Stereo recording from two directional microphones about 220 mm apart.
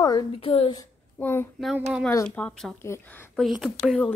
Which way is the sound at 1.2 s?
10° left (ahead or behind).